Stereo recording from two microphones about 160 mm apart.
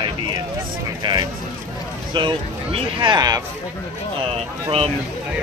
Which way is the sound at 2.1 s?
30° right (ahead or behind).